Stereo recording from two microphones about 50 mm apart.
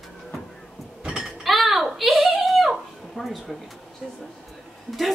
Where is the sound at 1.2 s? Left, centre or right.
Centre.